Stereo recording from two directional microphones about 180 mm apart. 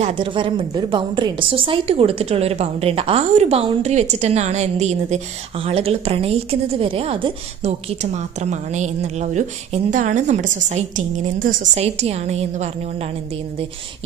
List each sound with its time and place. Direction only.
0.0 s a woman's voice: 30° right (ahead or behind)